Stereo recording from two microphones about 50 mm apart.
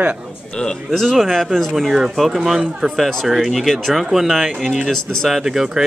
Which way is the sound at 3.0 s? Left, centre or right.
Centre.